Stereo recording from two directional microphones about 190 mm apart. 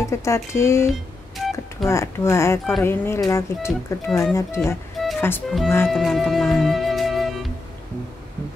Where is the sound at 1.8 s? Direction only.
15° left (ahead or behind).